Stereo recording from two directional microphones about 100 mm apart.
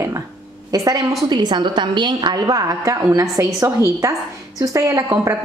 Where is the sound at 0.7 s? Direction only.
40° right (ahead or behind).